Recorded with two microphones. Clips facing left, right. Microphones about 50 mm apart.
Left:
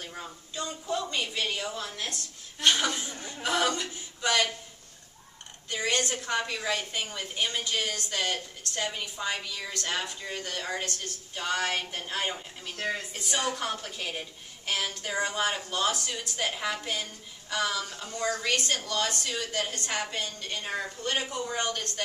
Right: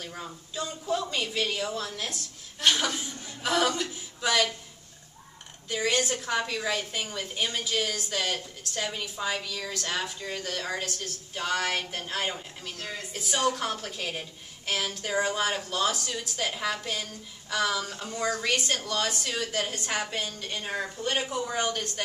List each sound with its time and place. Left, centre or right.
0.1 s a woman's voice: centre
5.7 s a woman's voice: centre
12.7 s speech: left
13.1 s a woman's voice: centre